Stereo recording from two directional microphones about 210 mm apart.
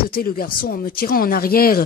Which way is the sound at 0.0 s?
45° left (ahead or behind).